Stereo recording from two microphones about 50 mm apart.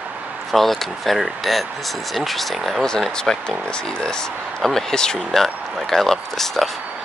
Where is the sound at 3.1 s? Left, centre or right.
Centre.